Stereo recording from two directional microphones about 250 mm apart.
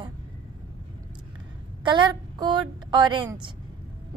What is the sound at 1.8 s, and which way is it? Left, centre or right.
A woman's voice, centre.